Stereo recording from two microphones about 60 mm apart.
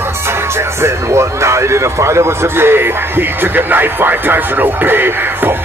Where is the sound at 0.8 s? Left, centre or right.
Right.